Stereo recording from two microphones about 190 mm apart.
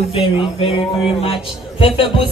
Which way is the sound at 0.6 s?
30° left (ahead or behind).